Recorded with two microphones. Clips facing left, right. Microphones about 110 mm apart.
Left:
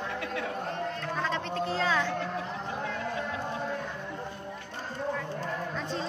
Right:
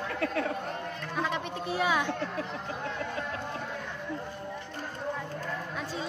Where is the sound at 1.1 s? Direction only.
15° right (ahead or behind).